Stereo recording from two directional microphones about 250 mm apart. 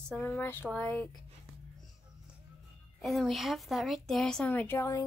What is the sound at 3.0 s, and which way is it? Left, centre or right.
Speech, centre.